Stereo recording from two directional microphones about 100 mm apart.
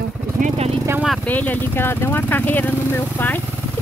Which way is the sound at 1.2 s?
15° left (ahead or behind).